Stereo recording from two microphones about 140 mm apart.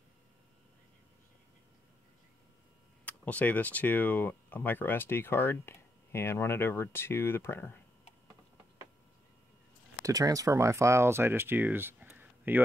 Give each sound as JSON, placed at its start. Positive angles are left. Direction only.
{"t": 3.1, "sound": "speech", "side_deg": 10}
{"t": 10.0, "sound": "speech", "side_deg": -25}